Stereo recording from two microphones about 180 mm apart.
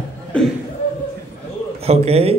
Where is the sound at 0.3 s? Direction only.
5° left (ahead or behind).